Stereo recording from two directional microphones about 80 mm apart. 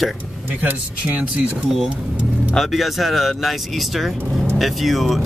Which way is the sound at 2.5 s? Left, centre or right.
Centre.